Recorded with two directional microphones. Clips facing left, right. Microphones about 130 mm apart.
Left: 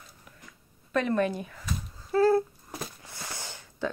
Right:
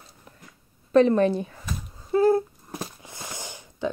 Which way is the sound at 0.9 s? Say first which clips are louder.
Right 8 dB; 30° right (ahead or behind).